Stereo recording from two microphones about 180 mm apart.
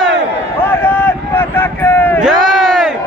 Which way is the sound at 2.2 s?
Centre (ahead or behind).